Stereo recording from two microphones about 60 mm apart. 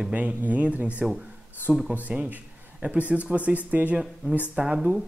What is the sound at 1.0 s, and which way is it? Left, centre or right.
Speech, centre.